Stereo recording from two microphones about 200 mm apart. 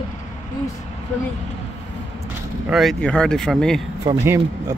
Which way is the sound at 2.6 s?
Centre (ahead or behind).